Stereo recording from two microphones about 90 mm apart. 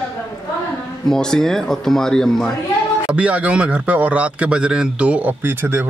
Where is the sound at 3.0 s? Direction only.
15° right (ahead or behind).